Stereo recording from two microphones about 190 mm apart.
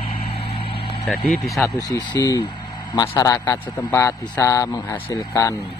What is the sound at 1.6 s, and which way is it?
A man's voice, 20° left (ahead or behind).